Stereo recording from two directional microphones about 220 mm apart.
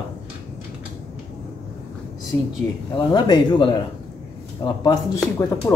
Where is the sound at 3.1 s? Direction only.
20° left (ahead or behind).